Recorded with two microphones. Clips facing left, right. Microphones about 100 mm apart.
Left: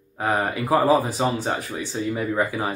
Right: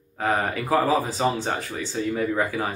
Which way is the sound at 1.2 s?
5° left (ahead or behind).